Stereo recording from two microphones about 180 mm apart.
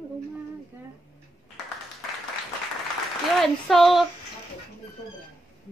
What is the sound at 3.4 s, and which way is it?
Speech, centre (ahead or behind).